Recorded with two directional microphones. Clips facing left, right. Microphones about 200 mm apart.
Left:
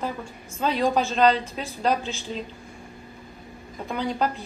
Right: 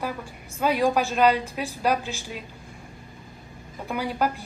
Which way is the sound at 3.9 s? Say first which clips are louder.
Even; 10° right (ahead or behind).